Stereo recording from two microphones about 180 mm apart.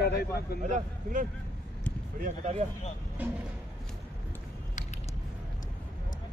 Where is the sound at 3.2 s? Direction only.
10° right (ahead or behind).